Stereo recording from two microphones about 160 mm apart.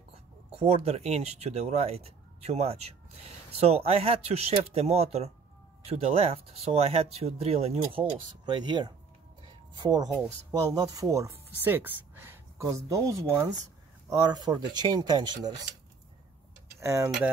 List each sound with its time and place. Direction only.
0.6 s speech: 40° right (ahead or behind)
16.8 s speech: 20° right (ahead or behind)